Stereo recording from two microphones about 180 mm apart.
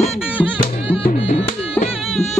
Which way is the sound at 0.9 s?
30° left (ahead or behind).